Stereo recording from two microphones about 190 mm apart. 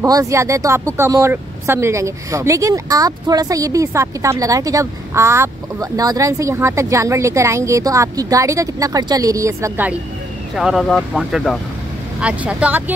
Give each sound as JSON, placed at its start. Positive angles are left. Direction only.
{"t": 0.0, "sound": "speech", "side_deg": -15}
{"t": 10.5, "sound": "speech", "side_deg": 0}